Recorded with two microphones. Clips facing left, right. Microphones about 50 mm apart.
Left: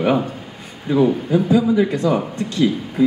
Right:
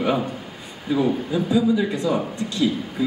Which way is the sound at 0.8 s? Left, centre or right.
Left.